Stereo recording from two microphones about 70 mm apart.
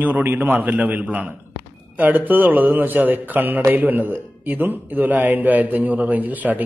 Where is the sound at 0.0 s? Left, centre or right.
Right.